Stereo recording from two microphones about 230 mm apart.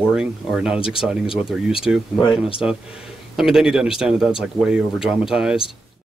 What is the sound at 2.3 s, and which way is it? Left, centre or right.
Speech, left.